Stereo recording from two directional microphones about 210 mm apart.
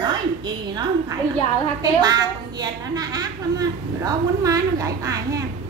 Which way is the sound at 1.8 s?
20° right (ahead or behind).